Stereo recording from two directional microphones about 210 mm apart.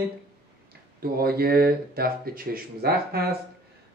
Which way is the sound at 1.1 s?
45° right (ahead or behind).